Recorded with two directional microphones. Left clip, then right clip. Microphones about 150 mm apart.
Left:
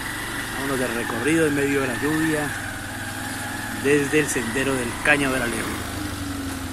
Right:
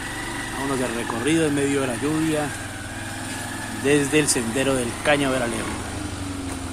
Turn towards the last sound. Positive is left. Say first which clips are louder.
# left 1 dB
turn(degrees=-20)  # may be behind; listen again after turning